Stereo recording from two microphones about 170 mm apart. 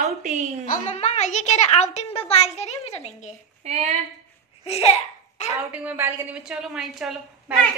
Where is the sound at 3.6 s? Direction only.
40° right (ahead or behind).